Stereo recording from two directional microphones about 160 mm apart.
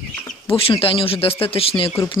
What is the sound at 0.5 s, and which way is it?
Speech, 35° left (ahead or behind).